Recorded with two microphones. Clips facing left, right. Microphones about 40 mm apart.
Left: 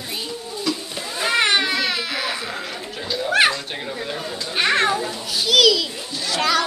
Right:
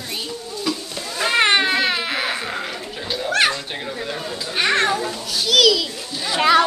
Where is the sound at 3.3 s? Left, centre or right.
Centre.